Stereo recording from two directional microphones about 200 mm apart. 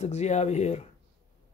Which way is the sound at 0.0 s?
35° left (ahead or behind).